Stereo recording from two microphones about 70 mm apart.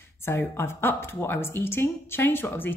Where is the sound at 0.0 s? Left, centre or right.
Left.